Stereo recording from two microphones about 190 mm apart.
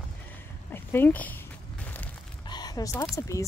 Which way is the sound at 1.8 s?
10° left (ahead or behind).